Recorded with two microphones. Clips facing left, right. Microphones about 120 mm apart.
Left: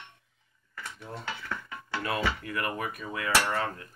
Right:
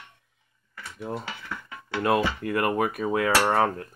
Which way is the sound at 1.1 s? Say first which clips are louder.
Right 10 dB; 45° right (ahead or behind).